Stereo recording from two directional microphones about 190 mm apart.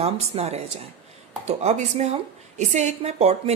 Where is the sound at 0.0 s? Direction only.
35° right (ahead or behind).